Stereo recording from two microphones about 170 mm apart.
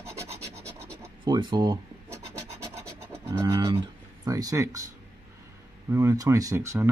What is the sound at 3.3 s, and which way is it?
Speech, 20° right (ahead or behind).